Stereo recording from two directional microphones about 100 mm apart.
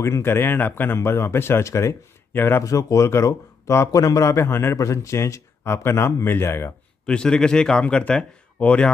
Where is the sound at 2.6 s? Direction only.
35° left (ahead or behind).